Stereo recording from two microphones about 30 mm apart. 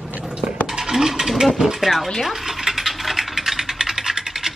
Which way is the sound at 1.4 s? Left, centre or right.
Centre.